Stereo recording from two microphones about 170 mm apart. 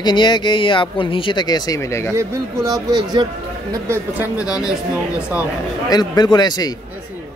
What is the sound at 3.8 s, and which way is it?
Speech, 15° right (ahead or behind).